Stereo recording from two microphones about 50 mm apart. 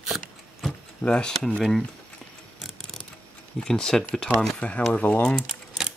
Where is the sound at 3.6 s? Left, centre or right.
Centre.